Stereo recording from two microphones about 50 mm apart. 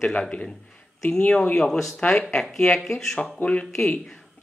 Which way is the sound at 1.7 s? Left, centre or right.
Centre.